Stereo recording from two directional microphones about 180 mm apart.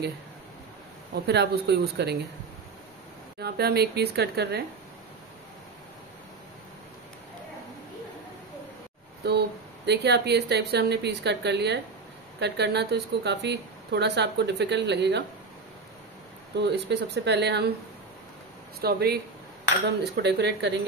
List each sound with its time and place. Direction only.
1.1 s speech: 65° right (ahead or behind)
3.3 s a woman's voice: 60° right (ahead or behind)
9.2 s speech: 65° right (ahead or behind)
16.5 s speech: 70° right (ahead or behind)
18.8 s a woman's voice: 60° right (ahead or behind)